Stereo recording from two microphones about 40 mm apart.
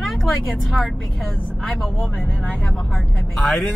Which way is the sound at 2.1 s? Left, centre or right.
Left.